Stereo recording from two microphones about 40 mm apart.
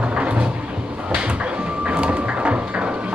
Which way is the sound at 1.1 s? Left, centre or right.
Right.